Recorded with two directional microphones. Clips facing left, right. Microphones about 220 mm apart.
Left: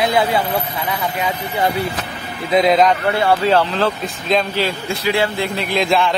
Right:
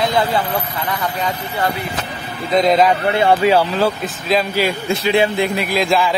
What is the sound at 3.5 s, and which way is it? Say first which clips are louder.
Speech: right 1 dB; 10° right (ahead or behind).